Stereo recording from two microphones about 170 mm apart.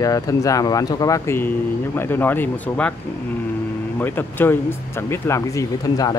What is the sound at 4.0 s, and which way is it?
Speech, 10° left (ahead or behind).